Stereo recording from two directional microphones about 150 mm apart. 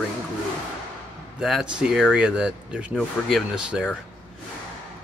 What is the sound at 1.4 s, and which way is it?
Speech, 5° right (ahead or behind).